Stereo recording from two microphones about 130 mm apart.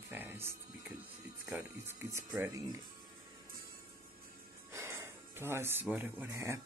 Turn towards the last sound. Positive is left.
turn(degrees=-20)  # may be behind; listen again after turning